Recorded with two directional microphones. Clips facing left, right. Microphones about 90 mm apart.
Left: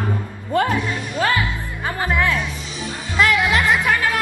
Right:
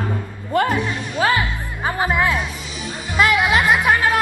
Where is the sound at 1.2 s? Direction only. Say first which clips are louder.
Right 2 dB; 20° right (ahead or behind).